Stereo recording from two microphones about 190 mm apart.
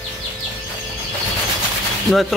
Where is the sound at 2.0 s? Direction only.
Centre (ahead or behind).